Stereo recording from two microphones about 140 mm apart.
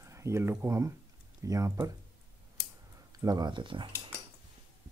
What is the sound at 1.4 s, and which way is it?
Speech, 25° right (ahead or behind).